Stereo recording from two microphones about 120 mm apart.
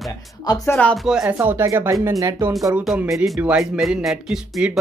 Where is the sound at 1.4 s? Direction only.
20° right (ahead or behind).